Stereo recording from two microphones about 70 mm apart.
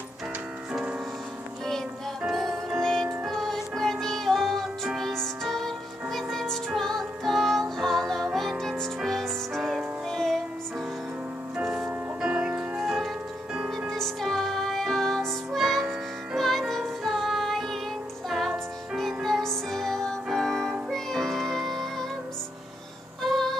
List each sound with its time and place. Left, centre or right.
2.8 s music: centre
11.5 s music: centre
18.9 s music: centre
23.2 s music: centre